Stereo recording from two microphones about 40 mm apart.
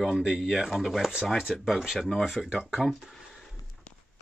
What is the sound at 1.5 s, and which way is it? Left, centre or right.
Speech, centre.